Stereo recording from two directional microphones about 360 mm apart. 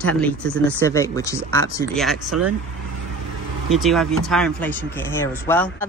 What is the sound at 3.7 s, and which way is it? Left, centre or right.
A man's voice, centre.